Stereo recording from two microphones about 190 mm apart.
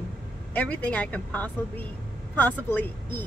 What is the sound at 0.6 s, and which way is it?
A woman's voice, 10° left (ahead or behind).